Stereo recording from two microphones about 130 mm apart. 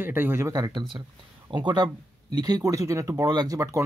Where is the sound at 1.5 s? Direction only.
35° right (ahead or behind).